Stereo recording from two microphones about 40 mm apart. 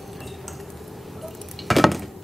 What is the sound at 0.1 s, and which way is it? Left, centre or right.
Dishes, centre.